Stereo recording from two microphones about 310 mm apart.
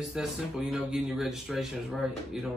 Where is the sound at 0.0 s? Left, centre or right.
Centre.